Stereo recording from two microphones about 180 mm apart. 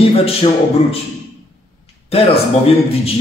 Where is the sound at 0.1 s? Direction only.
35° left (ahead or behind).